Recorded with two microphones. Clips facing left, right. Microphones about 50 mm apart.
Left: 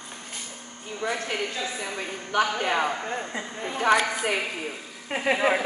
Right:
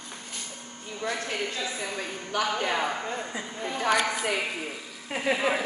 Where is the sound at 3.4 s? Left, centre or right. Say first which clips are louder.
Left 1 dB; centre.